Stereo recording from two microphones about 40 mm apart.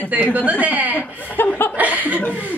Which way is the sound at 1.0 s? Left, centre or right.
Left.